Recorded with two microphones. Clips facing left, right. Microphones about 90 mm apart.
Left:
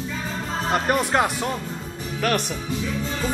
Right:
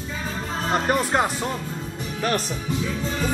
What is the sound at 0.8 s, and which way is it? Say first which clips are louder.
Speech: left 1 dB; 5° left (ahead or behind).